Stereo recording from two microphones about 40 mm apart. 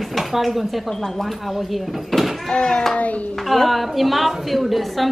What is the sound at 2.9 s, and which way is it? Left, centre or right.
Speech, left.